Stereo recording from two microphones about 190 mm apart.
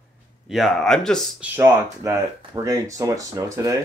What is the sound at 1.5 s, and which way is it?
Speech, 15° right (ahead or behind).